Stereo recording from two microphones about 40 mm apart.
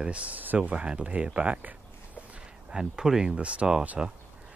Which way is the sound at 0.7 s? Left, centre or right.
Right.